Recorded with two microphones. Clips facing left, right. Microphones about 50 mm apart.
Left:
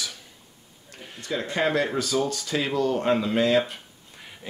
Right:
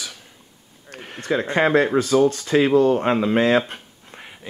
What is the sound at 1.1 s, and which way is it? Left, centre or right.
Speech, right.